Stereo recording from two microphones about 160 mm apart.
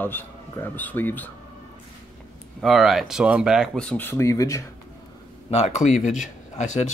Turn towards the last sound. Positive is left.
turn(degrees=45)  # may be behind; listen again after turning